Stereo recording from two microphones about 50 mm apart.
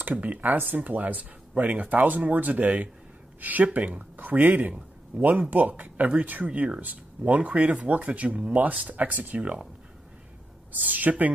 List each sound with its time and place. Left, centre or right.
0.0 s speech: right
10.7 s speech: right